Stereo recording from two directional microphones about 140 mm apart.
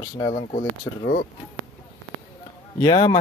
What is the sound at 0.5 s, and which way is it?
Speech, 60° left (ahead or behind).